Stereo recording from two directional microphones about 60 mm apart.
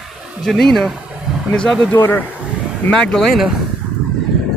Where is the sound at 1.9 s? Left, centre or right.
Left.